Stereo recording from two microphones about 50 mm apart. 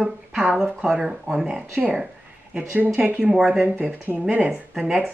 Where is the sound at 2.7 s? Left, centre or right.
Right.